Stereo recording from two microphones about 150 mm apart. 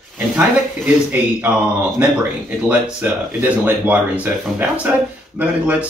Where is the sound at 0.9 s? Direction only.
10° right (ahead or behind).